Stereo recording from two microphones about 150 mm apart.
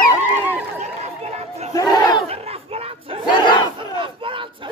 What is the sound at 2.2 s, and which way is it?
Battle cry, 45° right (ahead or behind).